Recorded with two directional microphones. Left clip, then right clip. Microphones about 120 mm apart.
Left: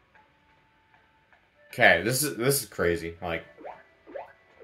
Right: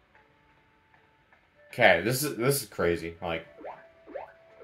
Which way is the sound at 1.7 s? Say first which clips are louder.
Left 1 dB; 25° left (ahead or behind).